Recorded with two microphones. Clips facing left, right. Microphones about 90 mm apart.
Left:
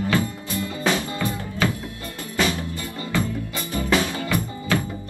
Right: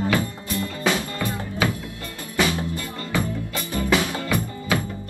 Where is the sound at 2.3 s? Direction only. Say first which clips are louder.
Right 1 dB; 20° right (ahead or behind).